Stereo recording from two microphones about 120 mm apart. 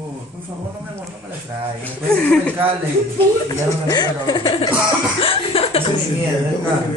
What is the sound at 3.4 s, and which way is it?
Speech, 35° left (ahead or behind).